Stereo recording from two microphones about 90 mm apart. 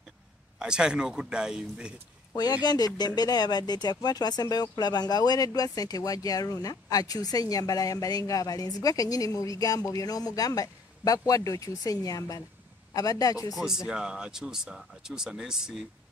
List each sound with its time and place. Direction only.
0.6 s speech: 10° right (ahead or behind)
2.3 s speech: 50° left (ahead or behind)
13.6 s speech: 5° right (ahead or behind)